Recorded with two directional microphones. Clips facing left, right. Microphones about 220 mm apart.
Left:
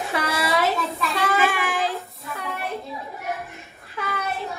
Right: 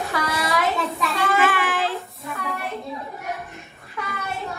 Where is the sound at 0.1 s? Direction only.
25° left (ahead or behind).